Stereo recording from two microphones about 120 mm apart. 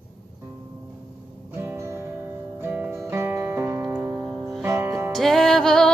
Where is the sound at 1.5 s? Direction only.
20° right (ahead or behind).